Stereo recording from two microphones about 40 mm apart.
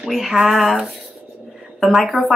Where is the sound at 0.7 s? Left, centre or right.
Centre.